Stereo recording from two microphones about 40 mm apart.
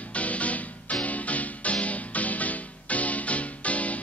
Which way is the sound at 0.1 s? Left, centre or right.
Left.